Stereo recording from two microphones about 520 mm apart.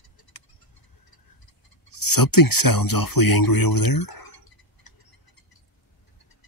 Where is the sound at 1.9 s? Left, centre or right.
Left.